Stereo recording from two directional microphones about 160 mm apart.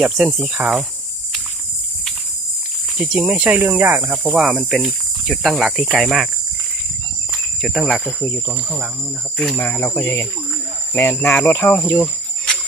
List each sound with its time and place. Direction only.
0.0 s speech: centre (ahead or behind)
3.0 s speech: 5° right (ahead or behind)
7.6 s speech: centre (ahead or behind)
8.0 s speech: 15° left (ahead or behind)
9.6 s speech: 10° left (ahead or behind)